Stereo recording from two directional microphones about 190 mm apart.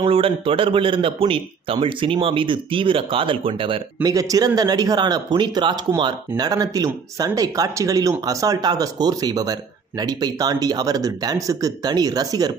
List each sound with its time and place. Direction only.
0.0 s a man's voice: 30° right (ahead or behind)